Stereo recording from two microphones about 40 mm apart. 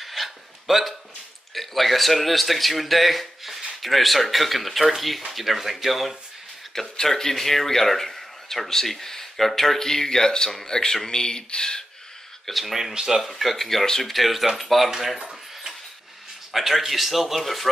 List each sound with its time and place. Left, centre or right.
0.0 s a sound: centre
1.5 s speech: centre
6.7 s speech: centre
12.4 s speech: centre
14.1 s speech: centre
14.9 s a sound: centre
16.5 s speech: centre